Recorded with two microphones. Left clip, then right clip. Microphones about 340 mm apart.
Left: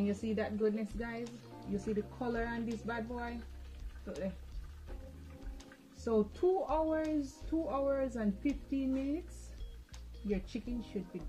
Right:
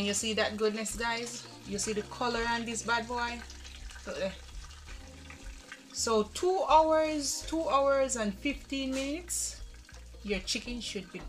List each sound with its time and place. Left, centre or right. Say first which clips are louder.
0.0 s speech: right 6 dB; right
6.0 s speech: right 3 dB; right
10.2 s speech: right 6 dB; right